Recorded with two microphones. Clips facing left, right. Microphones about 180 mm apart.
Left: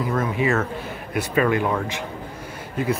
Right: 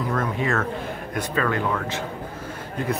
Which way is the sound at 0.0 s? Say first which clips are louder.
Left 2 dB; 5° left (ahead or behind).